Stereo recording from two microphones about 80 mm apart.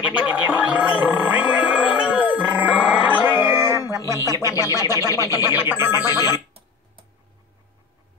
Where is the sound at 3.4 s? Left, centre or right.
Left.